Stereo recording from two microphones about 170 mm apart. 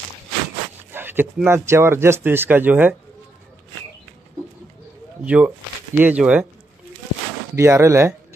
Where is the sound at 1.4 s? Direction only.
15° right (ahead or behind).